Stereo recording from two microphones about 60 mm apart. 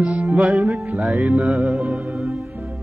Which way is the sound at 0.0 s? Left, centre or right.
Centre.